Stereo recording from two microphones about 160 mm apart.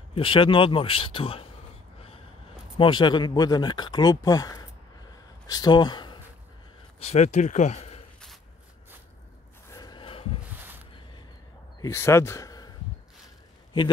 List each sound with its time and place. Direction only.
0.1 s speech: 35° left (ahead or behind)
2.8 s speech: 30° left (ahead or behind)
7.1 s speech: 45° left (ahead or behind)
9.7 s a sound: 25° left (ahead or behind)
11.8 s speech: 15° left (ahead or behind)